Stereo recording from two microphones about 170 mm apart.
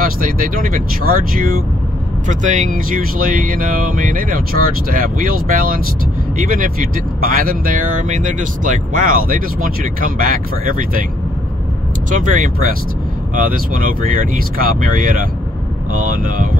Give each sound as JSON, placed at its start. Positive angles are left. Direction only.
{"t": 0.0, "sound": "speech", "side_deg": -55}
{"t": 12.1, "sound": "speech", "side_deg": -50}